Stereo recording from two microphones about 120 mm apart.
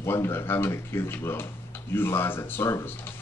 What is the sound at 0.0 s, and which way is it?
Speech, 20° left (ahead or behind).